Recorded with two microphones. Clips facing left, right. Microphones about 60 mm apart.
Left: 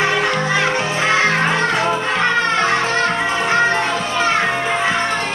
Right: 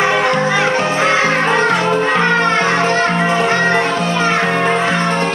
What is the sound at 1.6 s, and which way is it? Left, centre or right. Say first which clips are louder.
Music: right 4 dB; right.